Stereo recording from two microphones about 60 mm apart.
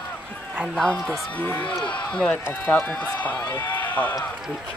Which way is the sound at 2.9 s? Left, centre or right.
Left.